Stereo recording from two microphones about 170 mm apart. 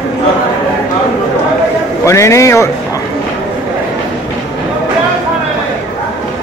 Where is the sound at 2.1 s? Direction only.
15° left (ahead or behind).